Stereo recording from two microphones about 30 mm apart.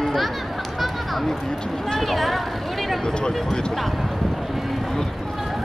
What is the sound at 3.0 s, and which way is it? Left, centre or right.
Speech, left.